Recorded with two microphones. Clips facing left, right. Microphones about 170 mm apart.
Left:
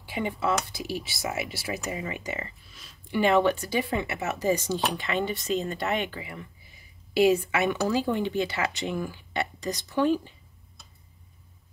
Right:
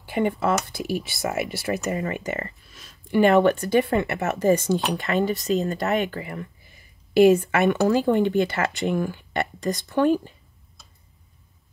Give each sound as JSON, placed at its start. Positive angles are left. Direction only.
{"t": 0.1, "sound": "speech", "side_deg": -50}
{"t": 0.6, "sound": "speech", "side_deg": 0}
{"t": 1.9, "sound": "speech", "side_deg": -55}
{"t": 2.6, "sound": "a sound", "side_deg": 0}
{"t": 3.1, "sound": "speech", "side_deg": -50}
{"t": 4.6, "sound": "speech", "side_deg": 0}
{"t": 4.9, "sound": "speech", "side_deg": -45}